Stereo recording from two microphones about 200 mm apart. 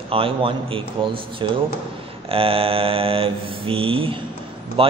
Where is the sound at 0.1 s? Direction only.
25° right (ahead or behind).